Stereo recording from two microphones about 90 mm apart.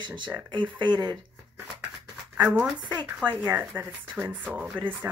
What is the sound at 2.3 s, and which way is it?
Speech, 20° right (ahead or behind).